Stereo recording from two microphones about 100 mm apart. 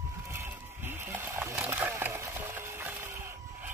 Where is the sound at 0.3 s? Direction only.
20° right (ahead or behind).